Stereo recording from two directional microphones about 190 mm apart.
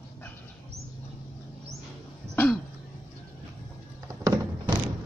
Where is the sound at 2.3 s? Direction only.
10° left (ahead or behind).